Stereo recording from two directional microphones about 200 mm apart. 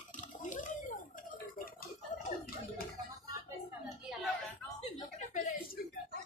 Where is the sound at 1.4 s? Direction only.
45° left (ahead or behind).